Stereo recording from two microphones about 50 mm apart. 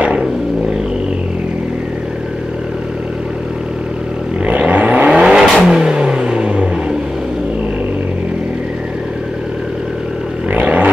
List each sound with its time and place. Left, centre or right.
4.5 s vehicle: right
5.5 s vehicle: centre
5.8 s vehicle: centre
10.5 s vehicle: right